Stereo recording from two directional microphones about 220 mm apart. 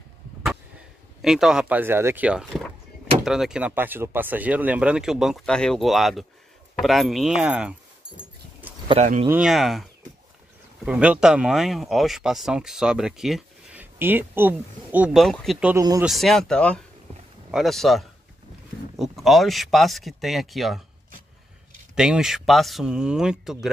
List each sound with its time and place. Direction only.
1.2 s speech: centre (ahead or behind)
8.6 s a sound: 10° right (ahead or behind)
9.0 s speech: 35° right (ahead or behind)
9.3 s speech: centre (ahead or behind)
10.9 s speech: 5° right (ahead or behind)
15.7 s speech: 15° right (ahead or behind)
16.1 s speech: centre (ahead or behind)
21.9 s speech: centre (ahead or behind)